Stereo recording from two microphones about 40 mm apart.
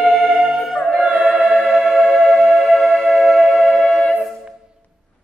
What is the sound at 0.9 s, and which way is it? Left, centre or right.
Choir, centre.